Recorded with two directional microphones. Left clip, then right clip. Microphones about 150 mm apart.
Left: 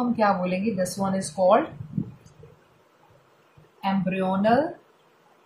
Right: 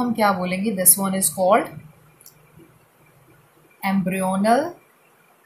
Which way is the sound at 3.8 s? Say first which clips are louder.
Right 2 dB; 30° right (ahead or behind).